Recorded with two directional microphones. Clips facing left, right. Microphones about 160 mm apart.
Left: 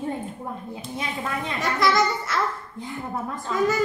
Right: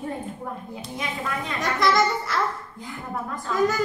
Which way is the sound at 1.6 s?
Centre (ahead or behind).